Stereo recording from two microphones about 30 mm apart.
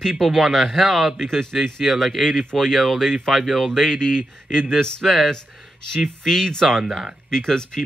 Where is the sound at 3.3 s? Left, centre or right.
Centre.